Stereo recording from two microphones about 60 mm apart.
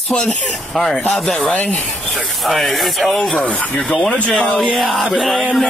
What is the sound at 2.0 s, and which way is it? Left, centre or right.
Speech, centre.